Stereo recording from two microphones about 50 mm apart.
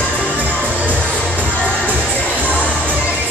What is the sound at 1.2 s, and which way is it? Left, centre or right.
Music, left.